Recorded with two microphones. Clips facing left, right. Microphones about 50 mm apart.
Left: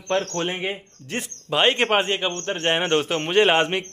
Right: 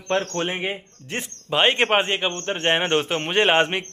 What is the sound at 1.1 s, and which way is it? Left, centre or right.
A man's voice, right.